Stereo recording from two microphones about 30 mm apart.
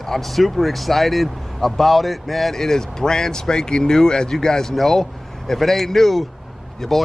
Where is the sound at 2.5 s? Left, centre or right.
Centre.